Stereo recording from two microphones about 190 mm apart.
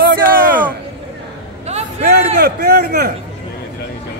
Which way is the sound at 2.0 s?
55° right (ahead or behind).